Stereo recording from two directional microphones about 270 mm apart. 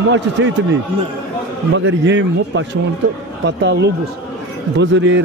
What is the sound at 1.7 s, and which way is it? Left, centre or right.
A man's voice, right.